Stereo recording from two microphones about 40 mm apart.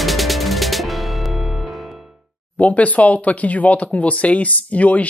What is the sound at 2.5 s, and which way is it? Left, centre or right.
Speech, left.